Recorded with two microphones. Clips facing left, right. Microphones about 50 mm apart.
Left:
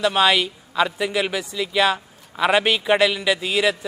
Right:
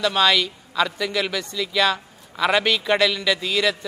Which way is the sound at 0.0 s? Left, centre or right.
Centre.